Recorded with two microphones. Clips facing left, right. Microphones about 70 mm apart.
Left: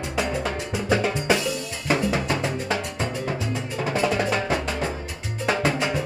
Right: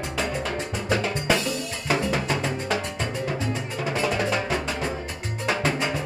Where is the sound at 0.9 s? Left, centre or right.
Centre.